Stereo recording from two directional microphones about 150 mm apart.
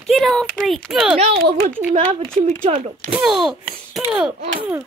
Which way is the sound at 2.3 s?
40° right (ahead or behind).